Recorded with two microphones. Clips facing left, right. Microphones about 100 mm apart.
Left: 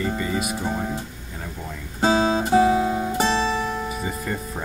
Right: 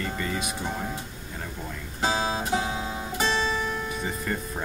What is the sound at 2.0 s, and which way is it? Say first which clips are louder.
Guitar: left 7 dB; 35° left (ahead or behind).